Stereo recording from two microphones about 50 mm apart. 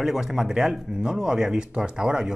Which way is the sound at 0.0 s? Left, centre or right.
Centre.